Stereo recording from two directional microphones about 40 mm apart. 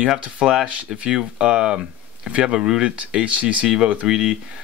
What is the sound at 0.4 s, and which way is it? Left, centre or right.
Speech, centre.